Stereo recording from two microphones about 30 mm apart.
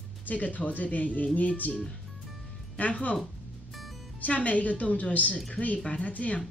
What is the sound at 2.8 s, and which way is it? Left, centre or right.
Speech, left.